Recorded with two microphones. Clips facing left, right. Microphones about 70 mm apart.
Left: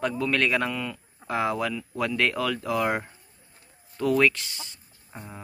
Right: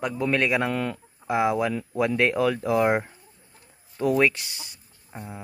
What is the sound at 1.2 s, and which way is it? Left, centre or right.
Speech, centre.